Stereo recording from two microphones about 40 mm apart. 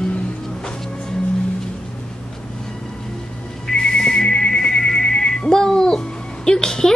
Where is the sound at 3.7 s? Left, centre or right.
Left.